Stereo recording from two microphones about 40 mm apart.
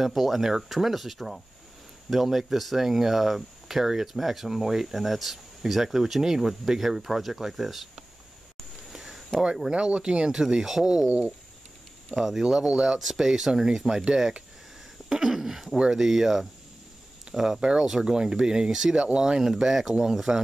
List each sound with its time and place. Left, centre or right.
0.0 s speech: centre
8.9 s a sound: centre
9.7 s speech: right
12.1 s speech: centre
15.0 s a sound: centre
15.9 s speech: centre